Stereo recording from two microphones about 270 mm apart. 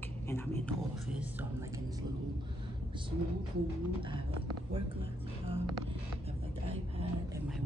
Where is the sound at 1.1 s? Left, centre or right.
Centre.